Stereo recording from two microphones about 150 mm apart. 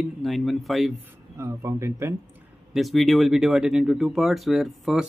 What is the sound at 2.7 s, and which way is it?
Speech, centre (ahead or behind).